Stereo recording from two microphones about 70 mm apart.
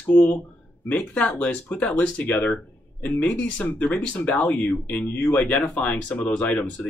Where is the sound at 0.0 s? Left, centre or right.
Left.